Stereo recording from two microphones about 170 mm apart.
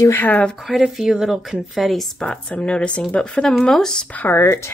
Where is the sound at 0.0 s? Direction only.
10° left (ahead or behind).